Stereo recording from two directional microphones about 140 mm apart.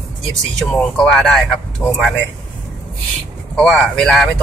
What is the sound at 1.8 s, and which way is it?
Speech, 20° left (ahead or behind).